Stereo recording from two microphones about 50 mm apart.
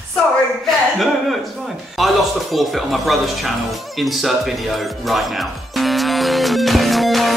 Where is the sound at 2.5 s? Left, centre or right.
Centre.